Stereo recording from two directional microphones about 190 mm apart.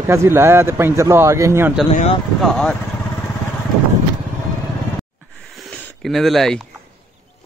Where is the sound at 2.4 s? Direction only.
5° left (ahead or behind).